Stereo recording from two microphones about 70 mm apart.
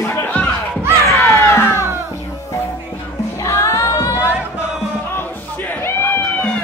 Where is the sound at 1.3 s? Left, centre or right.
Left.